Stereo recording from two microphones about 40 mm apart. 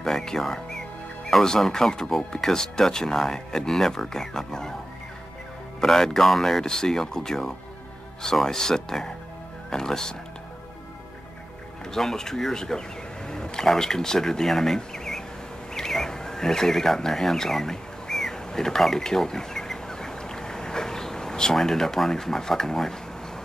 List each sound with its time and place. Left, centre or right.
0.0 s speech: centre
5.8 s speech: centre
11.9 s speech: centre
13.3 s a sound: centre
13.7 s speech: centre
15.7 s neigh: centre
21.5 s speech: centre